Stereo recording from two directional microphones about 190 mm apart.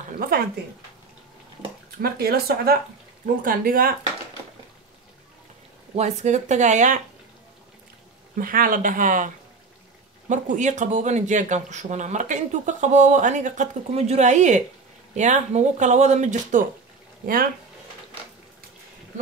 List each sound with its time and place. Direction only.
2.0 s speech: 55° right (ahead or behind)
5.9 s speech: 35° right (ahead or behind)
8.4 s speech: 45° right (ahead or behind)